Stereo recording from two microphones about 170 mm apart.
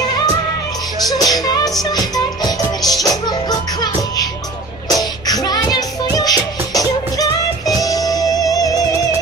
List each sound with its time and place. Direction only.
1.1 s music: 20° left (ahead or behind)